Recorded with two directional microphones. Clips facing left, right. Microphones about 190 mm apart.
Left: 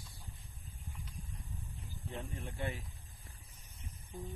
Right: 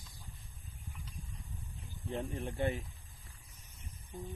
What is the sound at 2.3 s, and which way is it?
Speech, 45° right (ahead or behind).